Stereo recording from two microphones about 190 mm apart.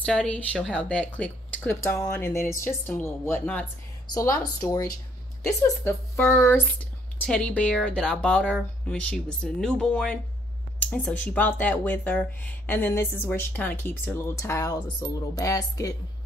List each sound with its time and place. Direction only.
0.0 s speech: 5° left (ahead or behind)